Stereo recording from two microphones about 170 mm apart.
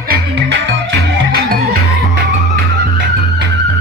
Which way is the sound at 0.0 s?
75° right (ahead or behind).